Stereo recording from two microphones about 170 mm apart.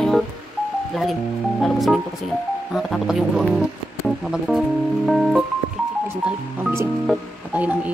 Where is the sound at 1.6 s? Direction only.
Centre (ahead or behind).